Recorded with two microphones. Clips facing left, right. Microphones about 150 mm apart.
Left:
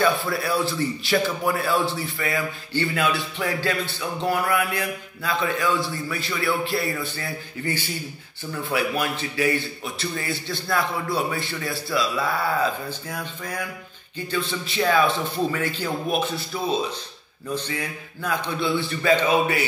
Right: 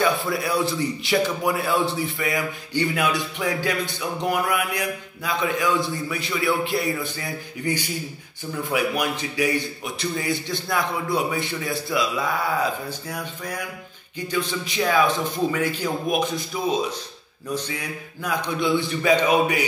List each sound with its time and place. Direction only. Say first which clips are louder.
0.3 s a man's voice: right 1 dB; 20° right (ahead or behind)